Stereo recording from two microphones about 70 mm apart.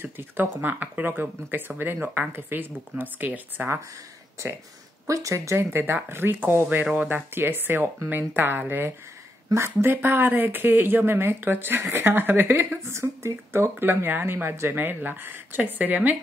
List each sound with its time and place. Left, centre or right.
0.0 s speech: right
5.0 s speech: right
12.8 s speech: right